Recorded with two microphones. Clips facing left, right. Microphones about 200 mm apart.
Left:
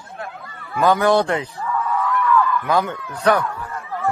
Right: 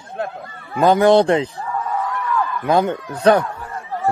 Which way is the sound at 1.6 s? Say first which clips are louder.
Left 1 dB; 35° right (ahead or behind).